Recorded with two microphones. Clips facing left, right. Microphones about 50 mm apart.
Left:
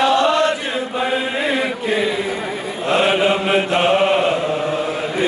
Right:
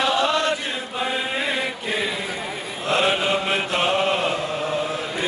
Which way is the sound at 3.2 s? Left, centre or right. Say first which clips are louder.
Left 6 dB; centre.